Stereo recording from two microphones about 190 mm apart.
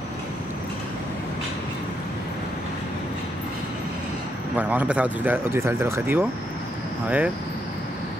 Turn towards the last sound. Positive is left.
turn(degrees=-5)  # may be behind; listen again after turning